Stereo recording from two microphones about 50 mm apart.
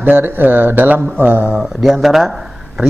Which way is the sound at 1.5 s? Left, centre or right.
Centre.